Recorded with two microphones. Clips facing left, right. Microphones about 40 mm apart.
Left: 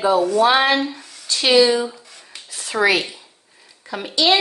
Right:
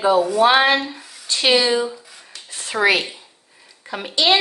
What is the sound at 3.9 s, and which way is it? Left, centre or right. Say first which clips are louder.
Speech: even; centre.